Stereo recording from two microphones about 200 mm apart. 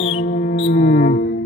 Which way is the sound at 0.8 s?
45° left (ahead or behind).